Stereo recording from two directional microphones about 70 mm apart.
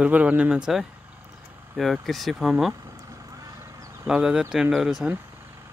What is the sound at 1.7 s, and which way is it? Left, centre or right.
Speech, centre.